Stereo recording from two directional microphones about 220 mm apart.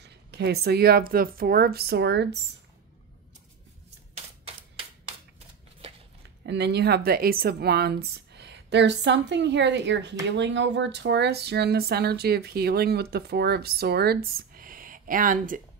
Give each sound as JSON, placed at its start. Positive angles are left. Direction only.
{"t": 0.0, "sound": "speech", "side_deg": -50}
{"t": 6.4, "sound": "speech", "side_deg": -50}